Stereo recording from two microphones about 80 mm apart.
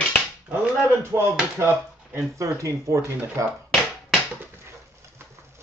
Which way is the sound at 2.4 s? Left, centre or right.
Right.